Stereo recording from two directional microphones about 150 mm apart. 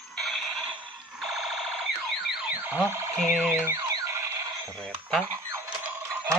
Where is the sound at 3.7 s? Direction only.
20° right (ahead or behind).